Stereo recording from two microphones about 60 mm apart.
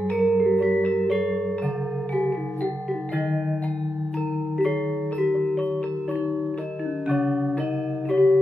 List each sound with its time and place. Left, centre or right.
0.1 s music: centre
5.2 s music: centre
7.1 s music: centre